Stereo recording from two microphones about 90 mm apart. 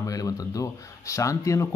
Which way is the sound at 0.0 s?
40° left (ahead or behind).